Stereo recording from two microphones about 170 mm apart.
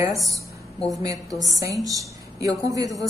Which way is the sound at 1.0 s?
20° right (ahead or behind).